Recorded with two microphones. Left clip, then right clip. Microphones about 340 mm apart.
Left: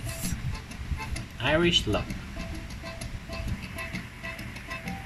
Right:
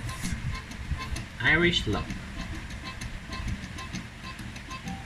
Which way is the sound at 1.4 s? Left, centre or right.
Centre.